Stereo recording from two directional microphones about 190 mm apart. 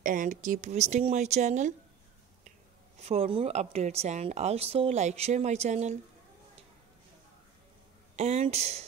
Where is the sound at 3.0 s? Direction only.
30° right (ahead or behind).